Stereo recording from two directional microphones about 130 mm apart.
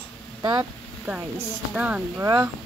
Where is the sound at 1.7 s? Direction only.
10° right (ahead or behind).